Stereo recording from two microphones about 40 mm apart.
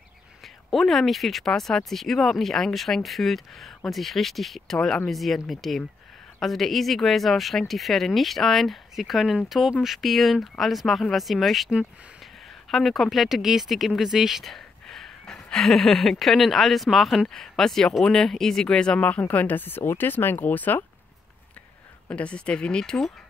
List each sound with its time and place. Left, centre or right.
0.7 s speech: centre
12.7 s speech: centre
14.4 s a sound: centre
15.6 s speech: centre
18.9 s speech: left
20.4 s speech: left
22.1 s speech: left